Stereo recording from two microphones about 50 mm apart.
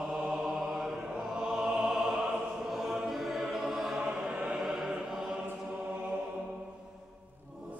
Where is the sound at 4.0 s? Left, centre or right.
Centre.